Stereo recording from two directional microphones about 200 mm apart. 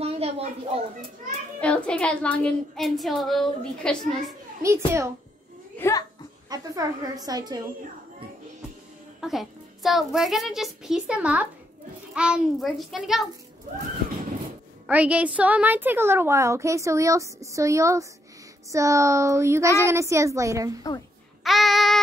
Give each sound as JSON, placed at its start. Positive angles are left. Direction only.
{"t": 0.0, "sound": "a sound", "side_deg": -30}
{"t": 1.6, "sound": "speech", "side_deg": 5}
{"t": 4.6, "sound": "a woman's voice", "side_deg": -15}
{"t": 5.8, "sound": "a child's voice", "side_deg": 15}
{"t": 6.5, "sound": "a woman's voice", "side_deg": -20}
{"t": 9.2, "sound": "speech", "side_deg": 0}
{"t": 14.9, "sound": "a woman's voice", "side_deg": -5}
{"t": 21.5, "sound": "child singing", "side_deg": 0}